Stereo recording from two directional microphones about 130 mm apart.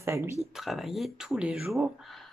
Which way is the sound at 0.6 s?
Centre (ahead or behind).